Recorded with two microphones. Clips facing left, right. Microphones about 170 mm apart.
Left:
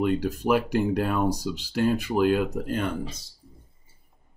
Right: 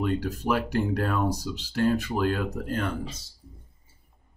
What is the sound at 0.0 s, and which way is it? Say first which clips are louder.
Speech: left 3 dB; 15° left (ahead or behind).